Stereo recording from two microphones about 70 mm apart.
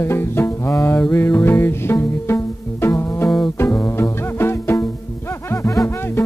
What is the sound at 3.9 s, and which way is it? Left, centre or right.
Music, left.